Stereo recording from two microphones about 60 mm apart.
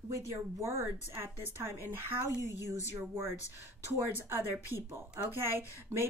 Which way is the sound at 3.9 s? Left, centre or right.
Right.